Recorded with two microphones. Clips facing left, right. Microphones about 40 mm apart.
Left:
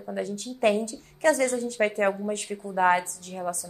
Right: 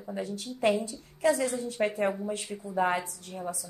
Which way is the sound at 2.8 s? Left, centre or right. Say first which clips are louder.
Left 6 dB; left.